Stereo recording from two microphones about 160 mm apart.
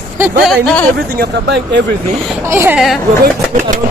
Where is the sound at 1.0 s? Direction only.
80° right.